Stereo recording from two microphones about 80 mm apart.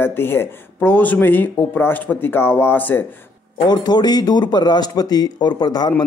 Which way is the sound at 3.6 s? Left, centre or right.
Left.